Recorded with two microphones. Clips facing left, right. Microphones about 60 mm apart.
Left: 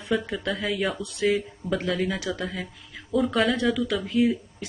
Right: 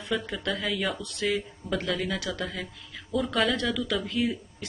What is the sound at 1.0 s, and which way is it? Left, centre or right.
Speech, centre.